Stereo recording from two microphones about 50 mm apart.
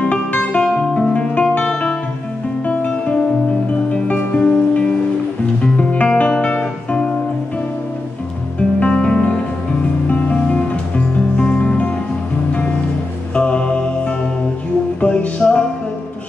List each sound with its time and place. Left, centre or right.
0.1 s music: left
2.6 s music: left
4.4 s music: centre
8.7 s music: left
13.3 s music: left